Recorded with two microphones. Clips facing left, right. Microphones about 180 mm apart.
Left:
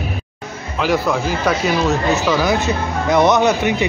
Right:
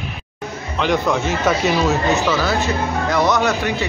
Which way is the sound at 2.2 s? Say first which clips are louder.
Left 2 dB; 15° left (ahead or behind).